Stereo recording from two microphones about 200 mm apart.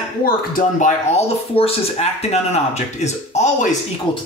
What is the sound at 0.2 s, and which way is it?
Speech, 45° left (ahead or behind).